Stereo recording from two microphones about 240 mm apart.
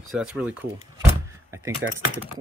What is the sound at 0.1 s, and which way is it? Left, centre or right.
Speech, centre.